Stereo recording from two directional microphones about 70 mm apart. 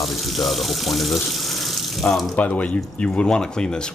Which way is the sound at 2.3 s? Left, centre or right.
Left.